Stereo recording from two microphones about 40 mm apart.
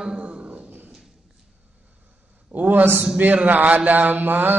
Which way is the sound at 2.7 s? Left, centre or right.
Right.